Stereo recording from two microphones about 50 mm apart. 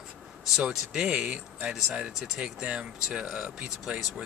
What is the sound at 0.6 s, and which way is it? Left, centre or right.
Speech, centre.